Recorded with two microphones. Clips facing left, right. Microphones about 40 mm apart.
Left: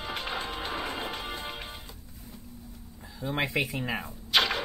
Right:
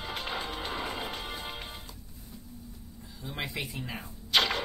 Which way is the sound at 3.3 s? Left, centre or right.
Left.